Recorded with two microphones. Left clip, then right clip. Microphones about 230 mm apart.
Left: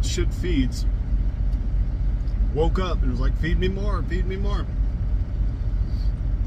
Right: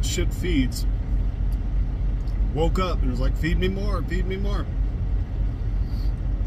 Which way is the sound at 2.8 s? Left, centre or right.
Centre.